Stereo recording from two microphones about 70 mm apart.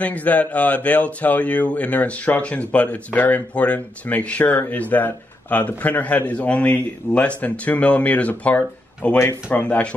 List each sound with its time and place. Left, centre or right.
0.0 s speech: left